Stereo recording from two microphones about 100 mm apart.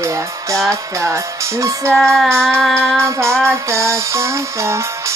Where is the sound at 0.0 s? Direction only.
30° right (ahead or behind).